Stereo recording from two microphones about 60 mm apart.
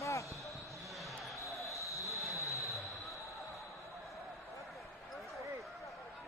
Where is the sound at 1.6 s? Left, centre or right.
Left.